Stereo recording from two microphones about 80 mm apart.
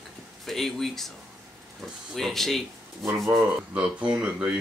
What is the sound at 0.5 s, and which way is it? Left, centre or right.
Speech, centre.